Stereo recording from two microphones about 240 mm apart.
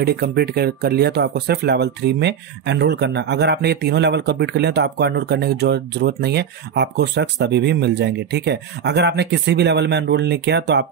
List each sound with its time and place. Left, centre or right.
0.0 s speech: right